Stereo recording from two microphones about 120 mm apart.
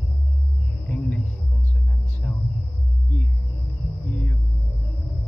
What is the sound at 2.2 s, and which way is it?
Cricket, 15° left (ahead or behind).